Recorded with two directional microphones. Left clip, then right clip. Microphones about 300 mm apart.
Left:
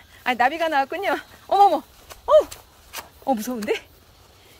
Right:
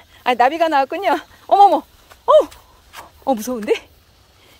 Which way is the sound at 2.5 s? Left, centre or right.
Left.